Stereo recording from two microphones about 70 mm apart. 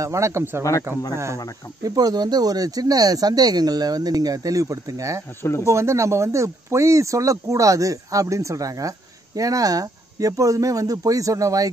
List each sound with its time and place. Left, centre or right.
0.0 s speech: right
1.8 s speech: right
5.4 s speech: left
5.7 s speech: right